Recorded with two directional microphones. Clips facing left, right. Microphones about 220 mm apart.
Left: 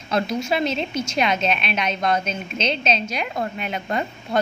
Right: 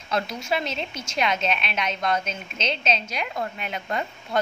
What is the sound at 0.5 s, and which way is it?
A woman's voice, 20° left (ahead or behind).